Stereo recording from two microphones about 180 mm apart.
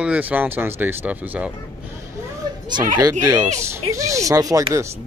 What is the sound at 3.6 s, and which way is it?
Speech, 15° right (ahead or behind).